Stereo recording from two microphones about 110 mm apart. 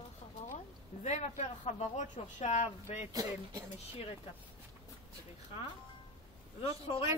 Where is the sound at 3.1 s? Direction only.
30° right (ahead or behind).